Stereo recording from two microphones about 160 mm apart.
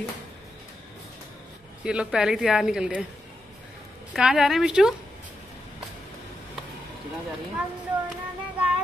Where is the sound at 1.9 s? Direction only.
5° right (ahead or behind).